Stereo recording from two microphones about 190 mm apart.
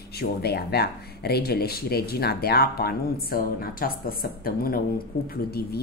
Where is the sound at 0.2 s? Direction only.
55° left (ahead or behind).